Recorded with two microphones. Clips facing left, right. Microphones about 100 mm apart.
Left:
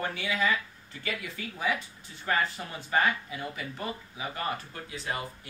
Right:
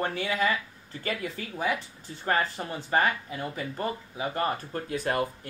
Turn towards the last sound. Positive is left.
turn(degrees=-50)  # may be behind; listen again after turning